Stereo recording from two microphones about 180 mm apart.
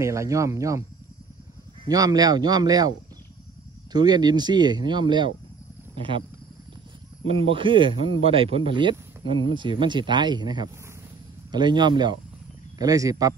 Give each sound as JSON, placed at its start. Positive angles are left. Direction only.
{"t": 0.0, "sound": "speech", "side_deg": -15}
{"t": 1.9, "sound": "speech", "side_deg": -20}
{"t": 3.9, "sound": "speech", "side_deg": -25}
{"t": 7.2, "sound": "speech", "side_deg": -30}